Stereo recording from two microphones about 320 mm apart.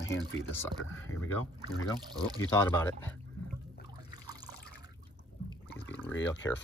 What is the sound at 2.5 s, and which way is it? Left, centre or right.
Speech, centre.